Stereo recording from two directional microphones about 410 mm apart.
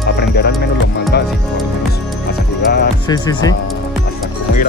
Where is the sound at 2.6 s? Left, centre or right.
Left.